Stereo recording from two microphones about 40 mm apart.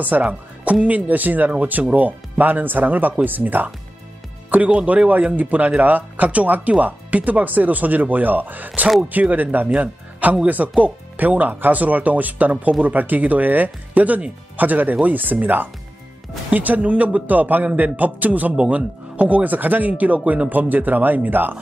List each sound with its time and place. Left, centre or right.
0.3 s speech: right
4.6 s speech: right
9.8 s speech: right